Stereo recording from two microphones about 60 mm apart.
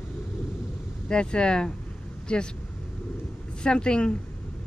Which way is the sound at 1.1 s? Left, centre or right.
Centre.